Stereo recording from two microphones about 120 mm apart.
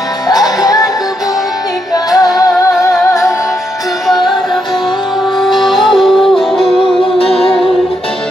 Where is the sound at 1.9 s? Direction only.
30° left (ahead or behind).